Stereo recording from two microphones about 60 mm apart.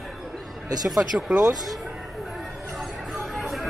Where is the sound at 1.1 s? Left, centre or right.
Right.